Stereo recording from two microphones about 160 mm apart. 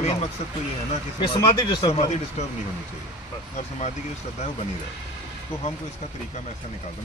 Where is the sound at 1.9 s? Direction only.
40° left (ahead or behind).